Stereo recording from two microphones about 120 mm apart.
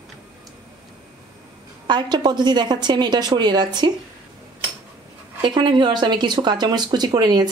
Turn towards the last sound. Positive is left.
turn(degrees=-35)  # may be behind; listen again after turning